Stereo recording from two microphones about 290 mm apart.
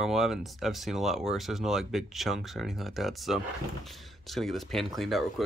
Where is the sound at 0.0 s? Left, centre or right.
Centre.